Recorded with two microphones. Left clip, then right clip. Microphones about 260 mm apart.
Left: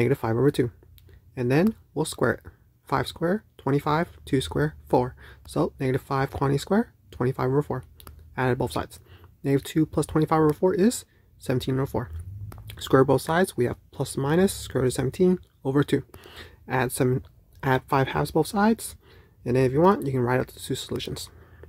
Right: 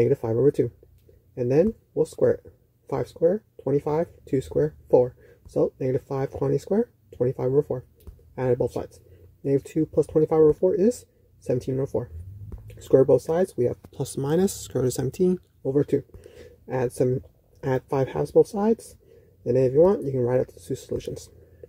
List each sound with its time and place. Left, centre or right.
0.0 s speech: left
13.9 s speech: centre
15.6 s speech: left